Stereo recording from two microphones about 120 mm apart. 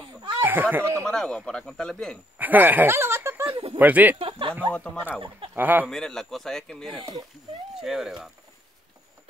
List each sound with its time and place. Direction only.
0.4 s speech: 15° right (ahead or behind)
1.0 s speech: 5° left (ahead or behind)
2.3 s speech: 15° right (ahead or behind)
4.2 s chuckle: 50° right (ahead or behind)
4.6 s speech: 10° left (ahead or behind)
5.5 s speech: 15° right (ahead or behind)
5.9 s speech: 5° left (ahead or behind)